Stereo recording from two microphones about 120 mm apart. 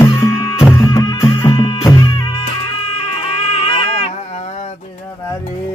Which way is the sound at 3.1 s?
55° left (ahead or behind).